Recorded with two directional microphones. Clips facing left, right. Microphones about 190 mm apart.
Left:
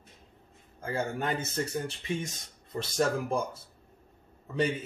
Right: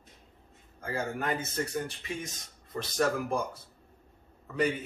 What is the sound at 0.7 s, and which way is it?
Speech, 25° left (ahead or behind).